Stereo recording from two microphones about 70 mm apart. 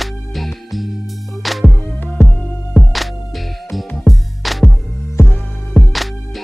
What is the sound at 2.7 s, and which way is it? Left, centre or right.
Music, centre.